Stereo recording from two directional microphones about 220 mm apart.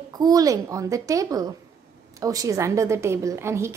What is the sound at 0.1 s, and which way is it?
A woman's voice, 15° right (ahead or behind).